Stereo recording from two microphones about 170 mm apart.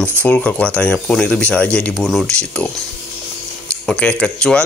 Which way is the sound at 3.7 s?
5° left (ahead or behind).